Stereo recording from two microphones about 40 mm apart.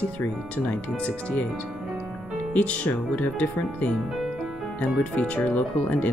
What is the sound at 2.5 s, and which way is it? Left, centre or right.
Speech, left.